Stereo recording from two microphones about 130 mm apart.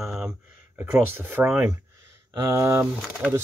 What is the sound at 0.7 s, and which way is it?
Speech, 15° right (ahead or behind).